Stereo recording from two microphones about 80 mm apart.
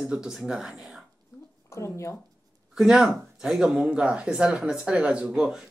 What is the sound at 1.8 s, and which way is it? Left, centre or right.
Speech, left.